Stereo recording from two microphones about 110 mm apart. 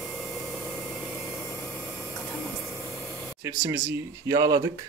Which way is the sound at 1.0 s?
25° left (ahead or behind).